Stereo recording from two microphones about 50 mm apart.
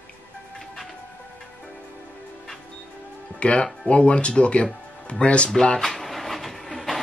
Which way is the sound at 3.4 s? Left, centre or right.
Left.